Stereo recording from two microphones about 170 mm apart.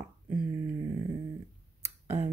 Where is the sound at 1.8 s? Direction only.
15° right (ahead or behind).